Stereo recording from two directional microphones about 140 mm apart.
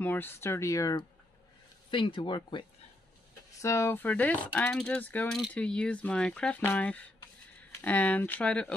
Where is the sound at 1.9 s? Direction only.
35° left (ahead or behind).